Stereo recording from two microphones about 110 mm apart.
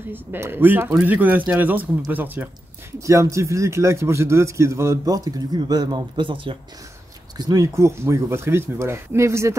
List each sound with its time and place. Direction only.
0.1 s speech: 20° right (ahead or behind)
3.0 s a man's voice: 30° right (ahead or behind); by 6.6 s 50° right (ahead or behind)
7.3 s a man's voice: 35° right (ahead or behind)